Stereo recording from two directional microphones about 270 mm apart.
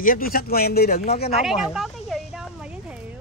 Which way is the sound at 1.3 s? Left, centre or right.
Centre.